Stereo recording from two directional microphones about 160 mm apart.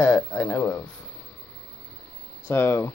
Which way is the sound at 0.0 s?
20° left (ahead or behind).